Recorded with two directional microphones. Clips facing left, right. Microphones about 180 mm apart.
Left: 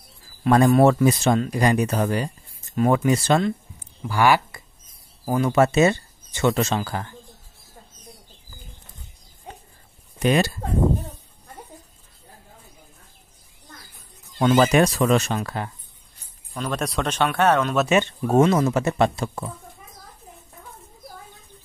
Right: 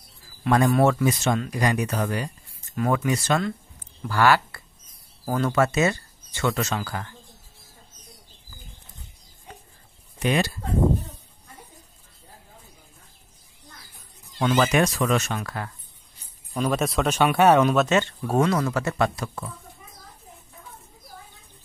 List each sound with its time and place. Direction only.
0.4 s speech: 30° left (ahead or behind)
4.0 s speech: 15° left (ahead or behind)
5.6 s speech: 25° left (ahead or behind)
10.2 s speech: 40° left (ahead or behind)
14.4 s speech: 35° left (ahead or behind)
16.5 s speech: 5° right (ahead or behind)
17.8 s speech: 15° left (ahead or behind)